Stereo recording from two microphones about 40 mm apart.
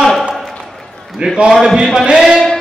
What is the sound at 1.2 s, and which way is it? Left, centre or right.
Speech, right.